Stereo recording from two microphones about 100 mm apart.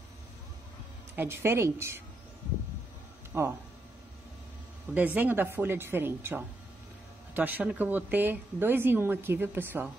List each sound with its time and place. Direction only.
1.1 s speech: 20° right (ahead or behind)
3.3 s speech: 25° right (ahead or behind)
4.9 s speech: 15° right (ahead or behind)